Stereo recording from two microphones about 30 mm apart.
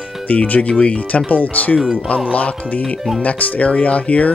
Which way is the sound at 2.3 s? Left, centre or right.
Left.